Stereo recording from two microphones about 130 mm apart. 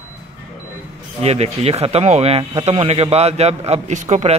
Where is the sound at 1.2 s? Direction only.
55° right (ahead or behind).